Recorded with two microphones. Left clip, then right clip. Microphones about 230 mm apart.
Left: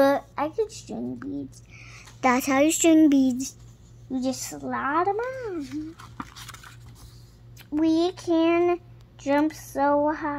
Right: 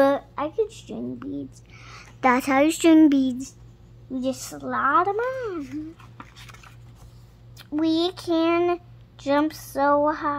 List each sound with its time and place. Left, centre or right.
0.0 s speech: centre
5.9 s a sound: left
7.7 s speech: centre